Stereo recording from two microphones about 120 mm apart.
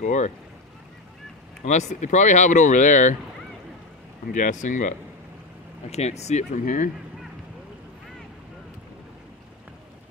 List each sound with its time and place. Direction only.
0.0 s speech: 90° left
1.6 s speech: 75° left (ahead or behind)
4.3 s speech: 90° left
5.9 s speech: 65° left (ahead or behind); by 6.9 s 90° left